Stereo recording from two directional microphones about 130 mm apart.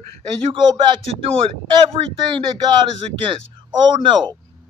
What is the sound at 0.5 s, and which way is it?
Speech, 40° right (ahead or behind).